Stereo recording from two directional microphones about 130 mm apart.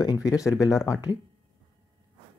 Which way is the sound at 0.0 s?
25° left (ahead or behind).